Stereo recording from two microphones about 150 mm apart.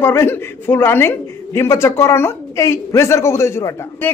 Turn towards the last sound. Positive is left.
turn(degrees=15)  # may be behind; listen again after turning